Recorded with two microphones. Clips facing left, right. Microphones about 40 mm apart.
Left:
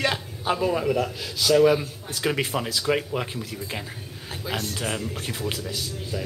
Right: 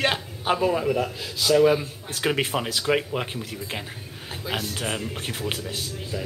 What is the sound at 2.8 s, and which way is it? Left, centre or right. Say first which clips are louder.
Speech: right 1 dB; centre.